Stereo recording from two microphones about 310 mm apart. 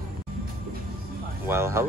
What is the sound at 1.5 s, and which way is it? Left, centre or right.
Speech, centre.